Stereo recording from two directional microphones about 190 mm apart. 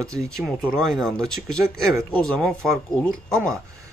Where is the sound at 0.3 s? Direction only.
Centre (ahead or behind).